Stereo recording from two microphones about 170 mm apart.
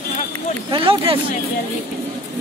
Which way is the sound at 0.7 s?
30° right (ahead or behind).